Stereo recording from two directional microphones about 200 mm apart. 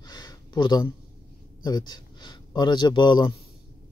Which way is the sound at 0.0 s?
20° left (ahead or behind).